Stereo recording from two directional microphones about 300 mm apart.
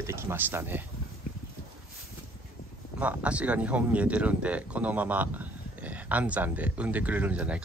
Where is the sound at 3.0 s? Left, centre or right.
Centre.